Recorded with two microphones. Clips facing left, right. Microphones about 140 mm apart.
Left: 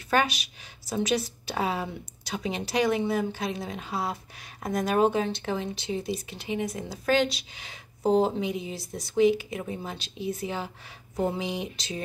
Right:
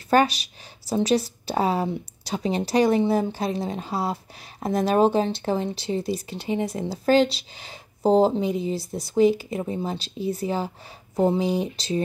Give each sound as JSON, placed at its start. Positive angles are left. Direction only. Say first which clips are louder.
{"t": 0.1, "sound": "a woman's voice", "louder": "right 6 dB", "side_deg": -35}